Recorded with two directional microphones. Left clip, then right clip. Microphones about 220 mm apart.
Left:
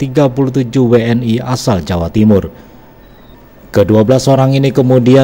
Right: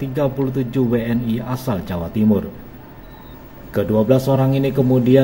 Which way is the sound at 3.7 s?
40° left (ahead or behind).